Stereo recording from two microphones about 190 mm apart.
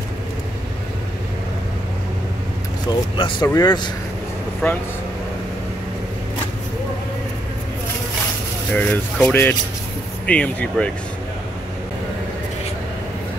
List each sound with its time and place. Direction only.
3.2 s speech: 25° left (ahead or behind)
4.6 s speech: 10° left (ahead or behind)
8.7 s speech: 5° left (ahead or behind)